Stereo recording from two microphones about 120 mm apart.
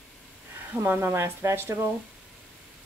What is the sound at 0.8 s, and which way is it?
Speech, 20° right (ahead or behind).